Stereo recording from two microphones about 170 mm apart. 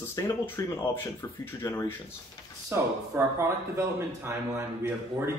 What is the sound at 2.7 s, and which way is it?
Speech, 15° right (ahead or behind).